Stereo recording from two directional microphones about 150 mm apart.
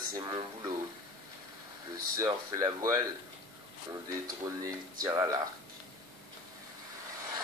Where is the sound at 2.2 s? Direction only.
25° right (ahead or behind).